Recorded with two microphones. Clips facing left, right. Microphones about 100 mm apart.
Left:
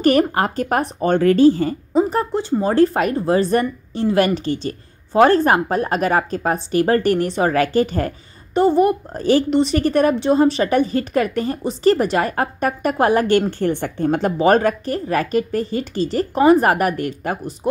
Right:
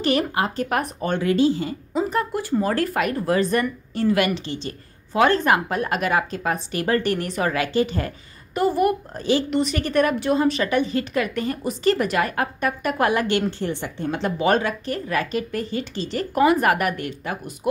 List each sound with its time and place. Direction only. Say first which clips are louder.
0.0 s a woman's voice: left 6 dB; 40° left (ahead or behind)
3.6 s a woman's voice: left 1 dB; 25° left (ahead or behind)
4.2 s a woman's voice: left 5 dB; 40° left (ahead or behind)
7.6 s a woman's voice: left 4 dB; 45° left (ahead or behind)
8.5 s a woman's voice: left 5 dB; 25° left (ahead or behind)